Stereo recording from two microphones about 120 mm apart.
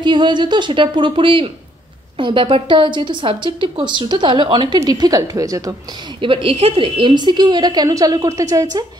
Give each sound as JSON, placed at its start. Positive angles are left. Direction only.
{"t": 0.0, "sound": "a woman's voice", "side_deg": -40}
{"t": 6.2, "sound": "a woman's voice", "side_deg": -50}